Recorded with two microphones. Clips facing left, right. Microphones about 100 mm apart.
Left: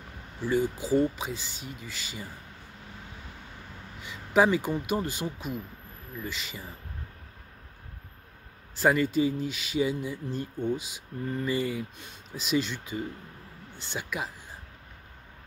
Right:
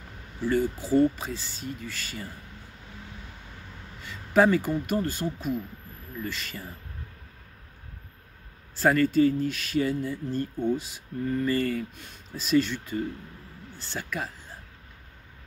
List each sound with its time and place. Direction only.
0.5 s speech: 15° left (ahead or behind)
4.0 s speech: 15° left (ahead or behind)
8.7 s speech: 15° left (ahead or behind)